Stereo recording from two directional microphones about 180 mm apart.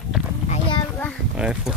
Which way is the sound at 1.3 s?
5° right (ahead or behind).